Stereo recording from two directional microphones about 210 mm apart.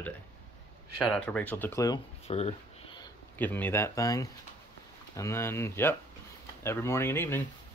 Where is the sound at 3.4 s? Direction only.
10° left (ahead or behind).